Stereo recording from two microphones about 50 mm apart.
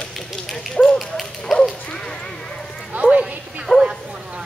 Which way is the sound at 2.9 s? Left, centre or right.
Right.